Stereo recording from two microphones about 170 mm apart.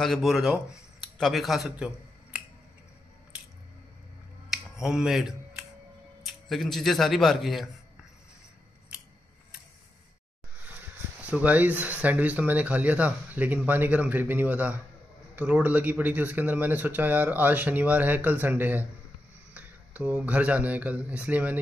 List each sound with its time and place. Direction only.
0.0 s speech: centre (ahead or behind)
4.5 s finger snapping: 5° right (ahead or behind)
6.2 s speech: centre (ahead or behind)
11.1 s speech: 10° right (ahead or behind)